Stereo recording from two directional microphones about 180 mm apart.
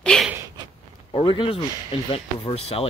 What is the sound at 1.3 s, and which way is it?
Speech, 30° left (ahead or behind).